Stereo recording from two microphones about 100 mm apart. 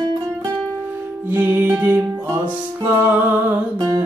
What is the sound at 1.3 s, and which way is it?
Music, 20° right (ahead or behind).